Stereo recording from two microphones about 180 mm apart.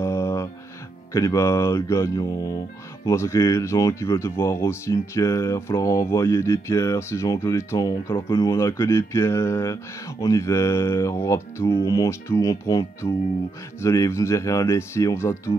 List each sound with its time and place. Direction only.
0.0 s music: 15° left (ahead or behind)
1.1 s speech: 15° left (ahead or behind)